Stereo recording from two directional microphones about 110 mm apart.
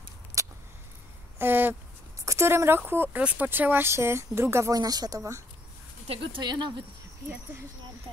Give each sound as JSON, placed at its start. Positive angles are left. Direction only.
{"t": 0.4, "sound": "keys jangling", "side_deg": -30}
{"t": 1.4, "sound": "speech", "side_deg": -20}
{"t": 6.0, "sound": "speech", "side_deg": -60}
{"t": 6.4, "sound": "speech", "side_deg": -40}